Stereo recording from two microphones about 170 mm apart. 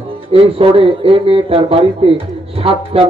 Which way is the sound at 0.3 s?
35° right (ahead or behind).